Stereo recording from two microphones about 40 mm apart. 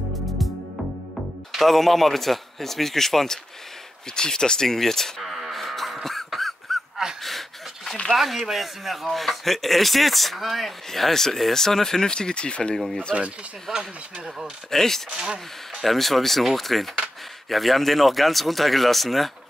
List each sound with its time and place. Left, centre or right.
1.5 s speech: centre
5.2 s music: centre
6.0 s a sound: centre
7.2 s pant: centre
8.1 s speech: centre; by 12.7 s left
12.7 s speech: centre
13.7 s speech: right
14.7 s speech: centre
15.2 s speech: right
15.8 s speech: centre